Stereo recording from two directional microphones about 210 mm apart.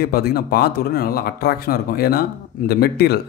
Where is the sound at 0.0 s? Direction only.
50° left (ahead or behind).